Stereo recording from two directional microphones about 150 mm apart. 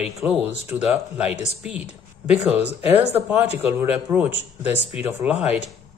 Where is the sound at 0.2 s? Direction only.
10° right (ahead or behind).